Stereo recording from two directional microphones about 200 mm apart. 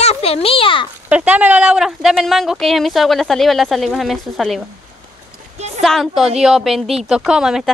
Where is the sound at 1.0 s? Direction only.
5° right (ahead or behind).